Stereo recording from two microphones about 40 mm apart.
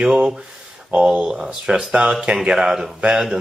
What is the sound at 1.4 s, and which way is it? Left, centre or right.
Speech, centre.